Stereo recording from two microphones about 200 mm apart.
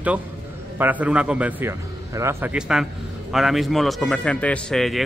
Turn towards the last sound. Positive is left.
turn(degrees=0)  # may be behind; listen again after turning